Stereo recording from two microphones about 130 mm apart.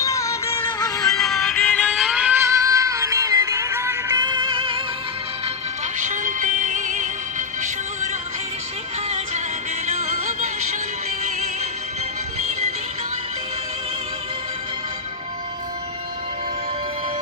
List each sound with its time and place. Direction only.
0.0 s music: 25° left (ahead or behind)
1.1 s music: centre (ahead or behind)
2.4 s music: 25° right (ahead or behind)
4.2 s music: 35° right (ahead or behind)
5.9 s music: 75° right (ahead or behind)
9.8 s music: 60° right (ahead or behind)